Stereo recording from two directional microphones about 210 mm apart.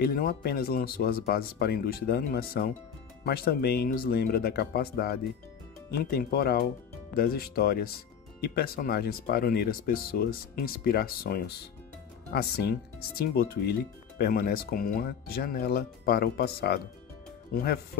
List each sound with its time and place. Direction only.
0.0 s speech: 45° left (ahead or behind)